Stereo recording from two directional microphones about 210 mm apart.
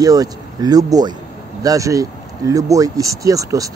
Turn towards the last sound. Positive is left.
turn(degrees=-15)  # may be behind; listen again after turning